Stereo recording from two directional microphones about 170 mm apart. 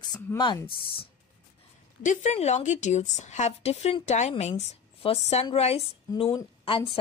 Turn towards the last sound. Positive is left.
turn(degrees=30)  # may be behind; listen again after turning